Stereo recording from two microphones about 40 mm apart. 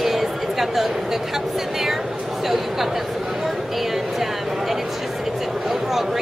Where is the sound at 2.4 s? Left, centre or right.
Centre.